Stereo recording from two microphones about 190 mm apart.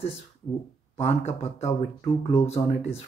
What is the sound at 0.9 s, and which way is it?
Speech, 35° left (ahead or behind).